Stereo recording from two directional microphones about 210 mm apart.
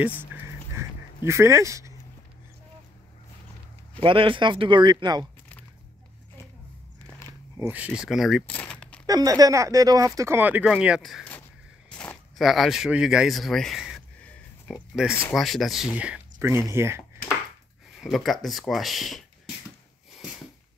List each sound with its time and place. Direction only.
0.3 s a sound: 10° right (ahead or behind)
4.0 s speech: 25° right (ahead or behind)
7.1 s biting: 5° left (ahead or behind)
7.5 s speech: 10° right (ahead or behind); by 9.0 s 5° left (ahead or behind)
9.0 s speech: 15° right (ahead or behind); by 11.4 s 5° left (ahead or behind)
11.9 s a sound: 5° left (ahead or behind)
15.1 s speech: 5° left (ahead or behind); by 17.0 s 10° right (ahead or behind)
17.9 s speech: centre (ahead or behind)